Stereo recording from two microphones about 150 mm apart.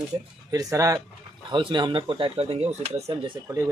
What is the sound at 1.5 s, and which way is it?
Speech, 30° right (ahead or behind).